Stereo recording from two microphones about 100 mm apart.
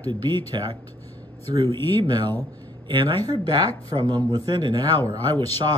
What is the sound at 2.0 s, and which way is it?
Speech, 45° right (ahead or behind).